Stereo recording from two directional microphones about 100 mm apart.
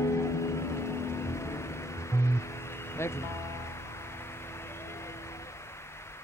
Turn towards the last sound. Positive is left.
turn(degrees=25)  # may be behind; listen again after turning